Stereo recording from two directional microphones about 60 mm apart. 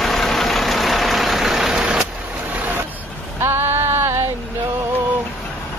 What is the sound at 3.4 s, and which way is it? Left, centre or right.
Music, right.